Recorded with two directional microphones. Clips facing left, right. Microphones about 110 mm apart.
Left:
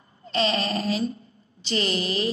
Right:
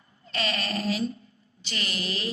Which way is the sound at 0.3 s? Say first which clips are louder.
Left 6 dB; 25° left (ahead or behind).